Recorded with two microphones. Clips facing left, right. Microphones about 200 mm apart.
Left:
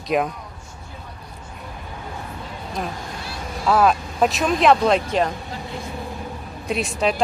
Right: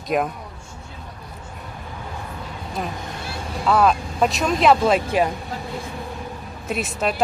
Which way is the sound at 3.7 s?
Centre (ahead or behind).